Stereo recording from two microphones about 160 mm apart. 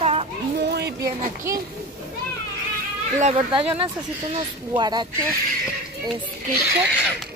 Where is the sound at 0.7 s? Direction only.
90° right.